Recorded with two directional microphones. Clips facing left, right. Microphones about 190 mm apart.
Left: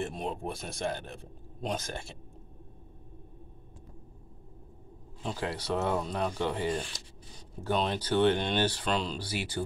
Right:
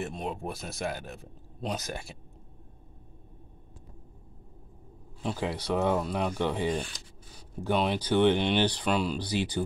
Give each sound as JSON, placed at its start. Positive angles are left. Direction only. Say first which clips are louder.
{"t": 0.0, "sound": "speech", "louder": "even", "side_deg": 0}
{"t": 5.2, "sound": "speech", "louder": "right 3 dB", "side_deg": -15}